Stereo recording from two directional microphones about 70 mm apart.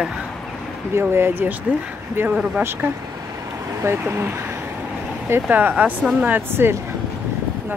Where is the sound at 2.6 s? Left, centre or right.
Right.